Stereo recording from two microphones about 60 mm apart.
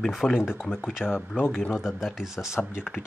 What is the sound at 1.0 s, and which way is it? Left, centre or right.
Speech, left.